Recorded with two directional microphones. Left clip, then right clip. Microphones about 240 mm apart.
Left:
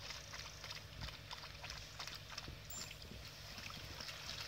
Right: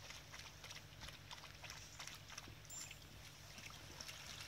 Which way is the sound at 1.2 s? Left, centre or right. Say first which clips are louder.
Left 4 dB; centre.